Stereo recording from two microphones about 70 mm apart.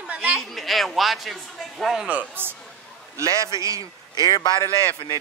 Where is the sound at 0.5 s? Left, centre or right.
Centre.